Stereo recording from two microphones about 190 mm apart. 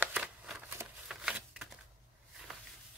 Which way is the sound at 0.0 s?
5° right (ahead or behind).